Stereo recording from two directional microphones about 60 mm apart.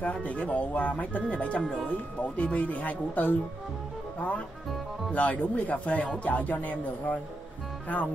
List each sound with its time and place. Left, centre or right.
0.0 s speech: left
5.1 s speech: left